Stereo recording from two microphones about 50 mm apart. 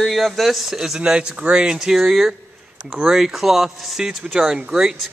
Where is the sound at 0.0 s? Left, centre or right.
Centre.